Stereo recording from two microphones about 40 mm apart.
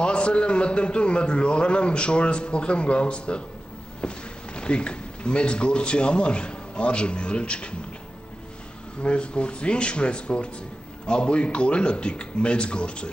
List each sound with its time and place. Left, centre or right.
0.0 s a man's voice: left
9.0 s a man's voice: left